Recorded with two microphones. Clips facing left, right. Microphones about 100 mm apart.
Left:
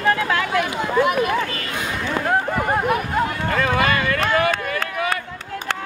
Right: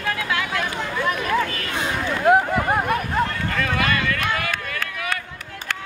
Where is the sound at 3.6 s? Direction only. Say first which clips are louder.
Left 3 dB; 30° left (ahead or behind).